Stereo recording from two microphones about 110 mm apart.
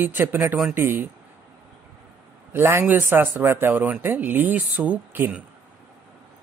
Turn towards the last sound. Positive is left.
turn(degrees=-10)  # may be behind; listen again after turning